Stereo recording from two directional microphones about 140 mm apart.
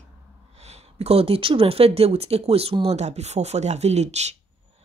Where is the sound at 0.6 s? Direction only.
50° right (ahead or behind).